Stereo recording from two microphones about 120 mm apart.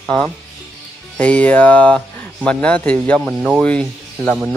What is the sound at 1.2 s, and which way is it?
Speech, 10° left (ahead or behind).